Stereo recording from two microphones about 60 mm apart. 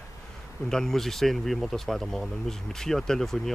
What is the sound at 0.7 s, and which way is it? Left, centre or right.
Speech, centre.